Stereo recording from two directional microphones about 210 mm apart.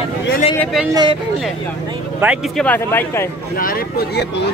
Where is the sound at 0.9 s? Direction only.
20° right (ahead or behind).